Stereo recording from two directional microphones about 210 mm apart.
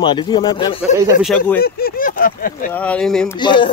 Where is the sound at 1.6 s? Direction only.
45° left (ahead or behind).